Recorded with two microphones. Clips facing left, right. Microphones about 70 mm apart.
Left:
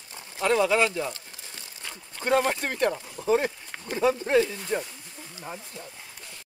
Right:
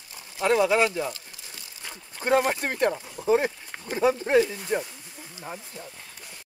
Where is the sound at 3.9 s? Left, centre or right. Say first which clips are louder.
Right 1 dB; centre.